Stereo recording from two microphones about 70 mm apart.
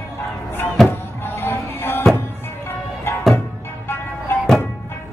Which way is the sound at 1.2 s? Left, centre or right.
Left.